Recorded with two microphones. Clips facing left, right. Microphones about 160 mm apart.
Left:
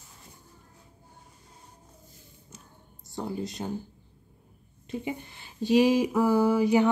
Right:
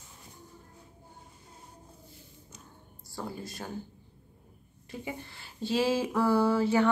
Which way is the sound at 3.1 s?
20° left (ahead or behind).